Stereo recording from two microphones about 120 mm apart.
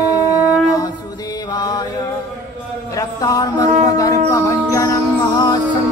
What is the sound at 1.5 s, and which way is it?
Mantra, 35° left (ahead or behind).